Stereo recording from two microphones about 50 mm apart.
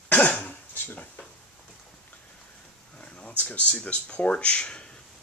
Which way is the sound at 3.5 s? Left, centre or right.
Left.